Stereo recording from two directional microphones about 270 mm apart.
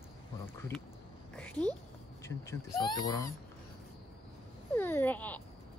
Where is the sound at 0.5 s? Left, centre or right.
Centre.